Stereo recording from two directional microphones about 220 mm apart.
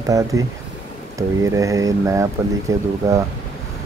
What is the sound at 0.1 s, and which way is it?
Speech, 15° right (ahead or behind).